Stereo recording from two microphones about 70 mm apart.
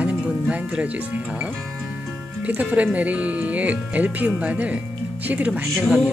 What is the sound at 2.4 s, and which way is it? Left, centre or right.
Speech, right.